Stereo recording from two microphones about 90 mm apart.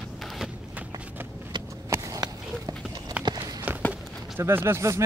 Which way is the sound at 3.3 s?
45° right (ahead or behind).